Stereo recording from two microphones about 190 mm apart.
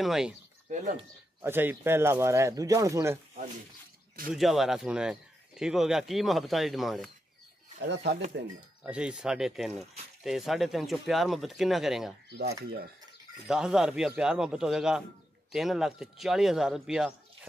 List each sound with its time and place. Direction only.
0.0 s speech: centre (ahead or behind)
0.7 s speech: 40° right (ahead or behind)
1.4 s speech: 10° right (ahead or behind)
4.3 s speech: centre (ahead or behind)
7.8 s speech: 65° right (ahead or behind)
8.8 s speech: 5° right (ahead or behind)
12.4 s speech: 55° right (ahead or behind)
13.5 s speech: 5° right (ahead or behind)